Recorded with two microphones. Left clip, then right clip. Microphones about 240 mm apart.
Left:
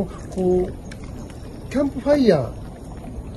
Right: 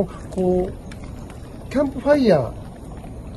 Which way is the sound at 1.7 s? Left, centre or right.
Right.